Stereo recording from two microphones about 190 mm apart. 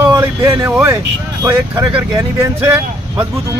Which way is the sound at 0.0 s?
15° right (ahead or behind).